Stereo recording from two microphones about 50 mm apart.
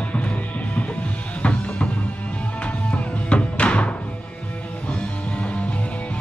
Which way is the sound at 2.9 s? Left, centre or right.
Left.